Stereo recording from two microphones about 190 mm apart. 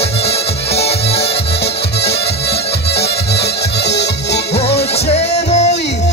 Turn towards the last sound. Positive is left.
turn(degrees=35)  # may be behind; listen again after turning